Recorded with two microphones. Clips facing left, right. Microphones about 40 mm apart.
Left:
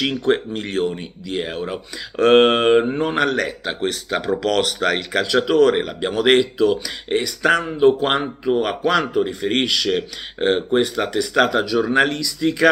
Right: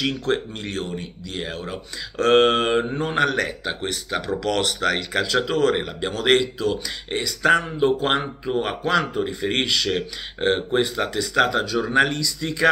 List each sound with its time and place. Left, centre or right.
0.0 s speech: left